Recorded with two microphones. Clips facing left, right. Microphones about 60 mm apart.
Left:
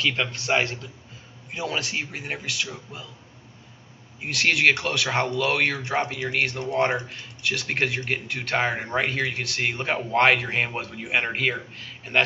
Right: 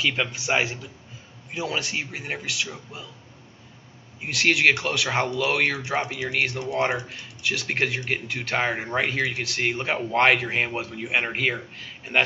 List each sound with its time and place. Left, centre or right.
0.0 s a man's voice: centre
4.2 s speech: centre